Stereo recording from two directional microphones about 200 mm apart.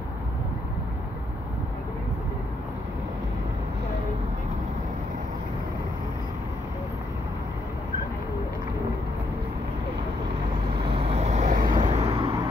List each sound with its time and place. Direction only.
10.9 s vehicle: 30° right (ahead or behind)
12.1 s vehicle: 25° right (ahead or behind)